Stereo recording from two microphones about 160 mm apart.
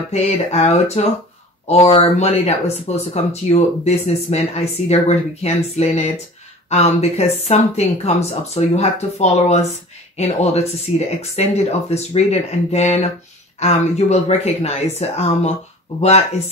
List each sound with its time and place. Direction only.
0.1 s speech: 45° left (ahead or behind)